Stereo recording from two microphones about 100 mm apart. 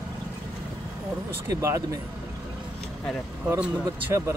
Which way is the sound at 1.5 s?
30° right (ahead or behind).